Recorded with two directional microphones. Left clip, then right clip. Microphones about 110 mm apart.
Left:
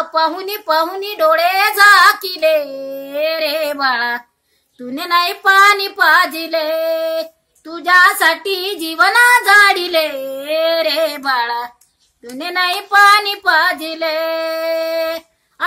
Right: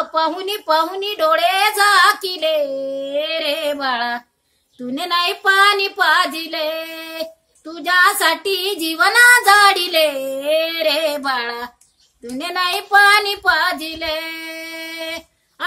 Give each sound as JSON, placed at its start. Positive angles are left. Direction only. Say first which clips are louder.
{"t": 0.1, "sound": "a woman's voice", "louder": "left 2 dB", "side_deg": -15}
{"t": 2.7, "sound": "female singing", "louder": "right 2 dB", "side_deg": -5}
{"t": 4.9, "sound": "female singing", "louder": "left 3 dB", "side_deg": -15}
{"t": 7.6, "sound": "child singing", "louder": "left 4 dB", "side_deg": -60}
{"t": 11.2, "sound": "a sound", "louder": "left 4 dB", "side_deg": -50}
{"t": 12.4, "sound": "child singing", "louder": "left 3 dB", "side_deg": -50}